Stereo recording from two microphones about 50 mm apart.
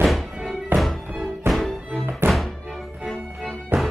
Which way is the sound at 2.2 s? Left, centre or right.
Right.